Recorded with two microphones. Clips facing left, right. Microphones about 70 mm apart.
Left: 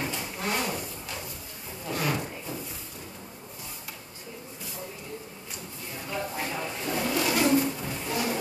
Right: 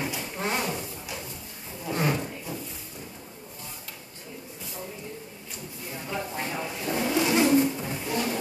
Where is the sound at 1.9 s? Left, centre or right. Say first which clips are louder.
Right 3 dB; right.